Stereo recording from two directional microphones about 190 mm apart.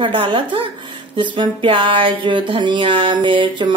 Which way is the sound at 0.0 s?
25° right (ahead or behind).